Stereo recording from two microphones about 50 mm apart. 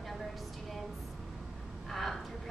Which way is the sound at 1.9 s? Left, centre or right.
Centre.